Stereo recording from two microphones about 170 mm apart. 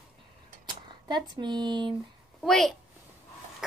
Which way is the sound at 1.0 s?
25° right (ahead or behind).